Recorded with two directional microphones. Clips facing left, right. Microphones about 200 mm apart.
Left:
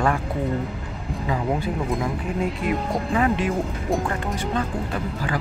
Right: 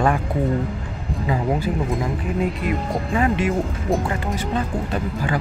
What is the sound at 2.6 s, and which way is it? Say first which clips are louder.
Speech: even; centre (ahead or behind).